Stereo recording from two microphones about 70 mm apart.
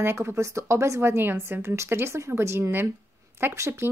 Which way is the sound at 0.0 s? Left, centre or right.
Right.